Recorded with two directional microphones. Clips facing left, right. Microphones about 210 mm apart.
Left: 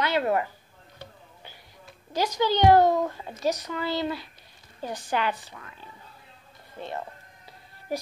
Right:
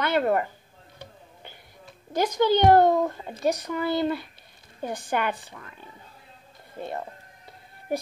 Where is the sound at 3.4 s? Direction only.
55° right (ahead or behind).